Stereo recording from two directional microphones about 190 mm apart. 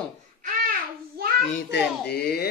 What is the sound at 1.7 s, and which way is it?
Speech, 60° left (ahead or behind).